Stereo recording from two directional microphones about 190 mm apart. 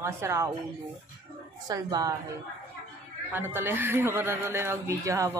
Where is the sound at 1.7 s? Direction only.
20° right (ahead or behind).